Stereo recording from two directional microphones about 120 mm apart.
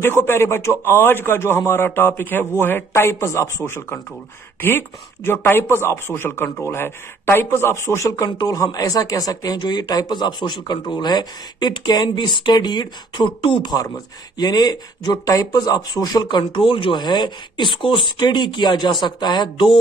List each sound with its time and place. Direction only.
0.0 s speech: 20° left (ahead or behind); by 19.8 s 40° left (ahead or behind)